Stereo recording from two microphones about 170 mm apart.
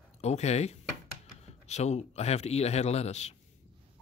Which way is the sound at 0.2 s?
40° left (ahead or behind).